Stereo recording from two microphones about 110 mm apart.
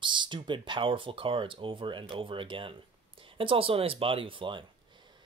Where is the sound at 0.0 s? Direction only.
45° right (ahead or behind).